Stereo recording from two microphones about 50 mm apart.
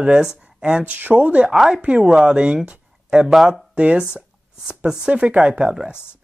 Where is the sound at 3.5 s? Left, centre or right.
Right.